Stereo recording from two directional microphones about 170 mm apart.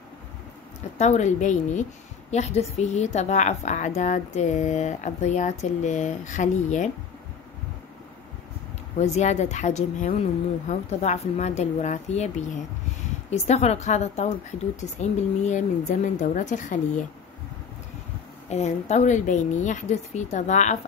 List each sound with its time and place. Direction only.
0.9 s a woman's voice: 40° left (ahead or behind)
8.9 s a woman's voice: 40° left (ahead or behind)
18.5 s a woman's voice: 40° left (ahead or behind)